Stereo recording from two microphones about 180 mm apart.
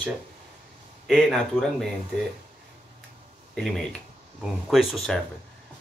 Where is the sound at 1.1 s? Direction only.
Centre (ahead or behind).